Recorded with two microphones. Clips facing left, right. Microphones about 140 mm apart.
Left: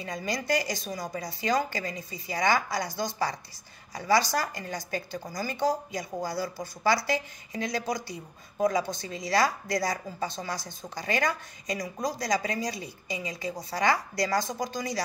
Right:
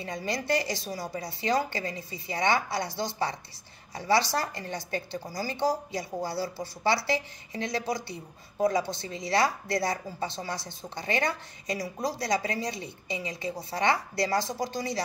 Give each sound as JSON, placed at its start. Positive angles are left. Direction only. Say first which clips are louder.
{"t": 0.0, "sound": "a woman's voice", "louder": "even", "side_deg": -30}